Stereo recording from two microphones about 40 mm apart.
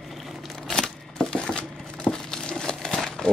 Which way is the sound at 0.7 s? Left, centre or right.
Centre.